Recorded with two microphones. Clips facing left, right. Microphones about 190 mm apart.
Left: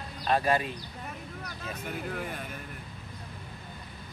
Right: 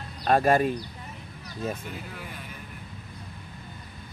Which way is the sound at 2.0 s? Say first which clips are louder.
Left 5 dB; 50° left (ahead or behind).